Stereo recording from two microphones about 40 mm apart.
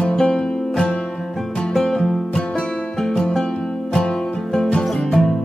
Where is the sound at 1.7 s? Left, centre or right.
Centre.